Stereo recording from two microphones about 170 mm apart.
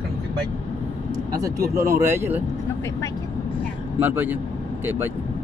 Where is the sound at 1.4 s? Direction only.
20° right (ahead or behind).